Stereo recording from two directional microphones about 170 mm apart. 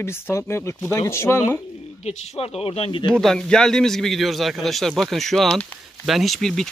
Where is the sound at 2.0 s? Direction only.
35° left (ahead or behind).